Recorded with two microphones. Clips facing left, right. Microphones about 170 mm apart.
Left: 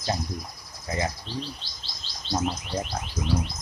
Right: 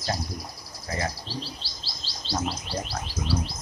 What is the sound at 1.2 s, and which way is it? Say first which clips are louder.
Chirp: left 2 dB; 35° right (ahead or behind).